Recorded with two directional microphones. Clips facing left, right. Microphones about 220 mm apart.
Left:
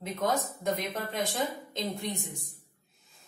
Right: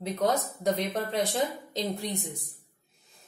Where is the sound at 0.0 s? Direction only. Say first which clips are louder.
Right 3 dB; 35° right (ahead or behind).